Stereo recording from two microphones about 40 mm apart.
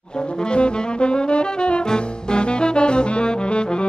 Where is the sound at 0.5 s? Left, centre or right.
Left.